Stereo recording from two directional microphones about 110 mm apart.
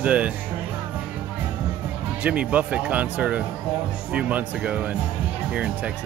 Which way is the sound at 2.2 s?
15° right (ahead or behind).